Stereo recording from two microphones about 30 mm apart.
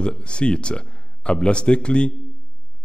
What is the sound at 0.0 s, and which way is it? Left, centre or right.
Speech, left.